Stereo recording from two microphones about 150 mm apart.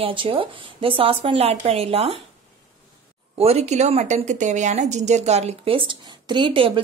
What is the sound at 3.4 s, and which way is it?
A woman's voice, 45° right (ahead or behind).